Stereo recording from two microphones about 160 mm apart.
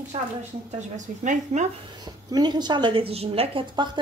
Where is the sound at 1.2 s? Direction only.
50° right (ahead or behind).